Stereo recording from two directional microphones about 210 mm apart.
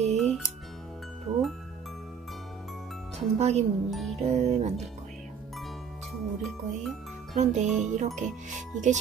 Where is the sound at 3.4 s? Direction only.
30° right (ahead or behind).